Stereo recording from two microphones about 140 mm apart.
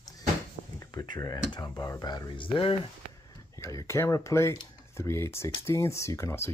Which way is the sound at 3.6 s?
20° left (ahead or behind).